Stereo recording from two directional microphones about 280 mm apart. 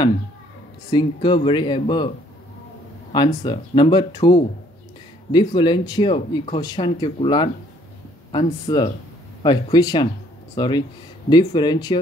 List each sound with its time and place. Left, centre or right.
0.8 s speech: centre
3.1 s speech: centre